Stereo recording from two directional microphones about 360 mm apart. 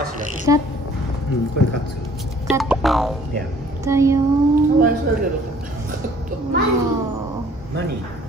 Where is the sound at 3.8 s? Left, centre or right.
Centre.